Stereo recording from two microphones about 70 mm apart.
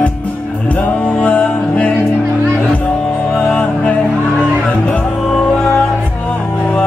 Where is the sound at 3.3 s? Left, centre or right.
Centre.